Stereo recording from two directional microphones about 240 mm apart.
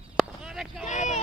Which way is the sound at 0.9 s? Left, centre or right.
Left.